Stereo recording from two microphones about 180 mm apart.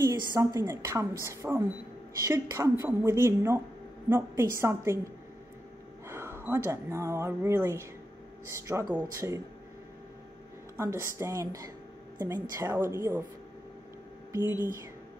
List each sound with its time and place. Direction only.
0.0 s a woman's voice: 20° right (ahead or behind)
6.0 s a woman's voice: 15° right (ahead or behind)
10.8 s a woman's voice: 15° right (ahead or behind)
14.3 s a woman's voice: 15° right (ahead or behind)